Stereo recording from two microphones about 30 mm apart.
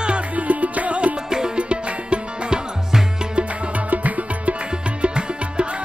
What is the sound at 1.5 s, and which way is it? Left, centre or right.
Music, right.